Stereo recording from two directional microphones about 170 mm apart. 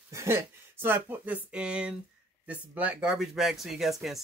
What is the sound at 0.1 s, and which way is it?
Speech, 15° right (ahead or behind).